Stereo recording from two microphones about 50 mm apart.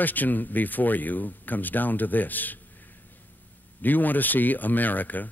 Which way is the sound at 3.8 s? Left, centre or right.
Left.